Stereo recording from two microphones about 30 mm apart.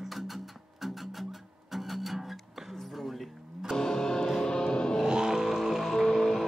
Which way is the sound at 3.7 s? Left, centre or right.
Centre.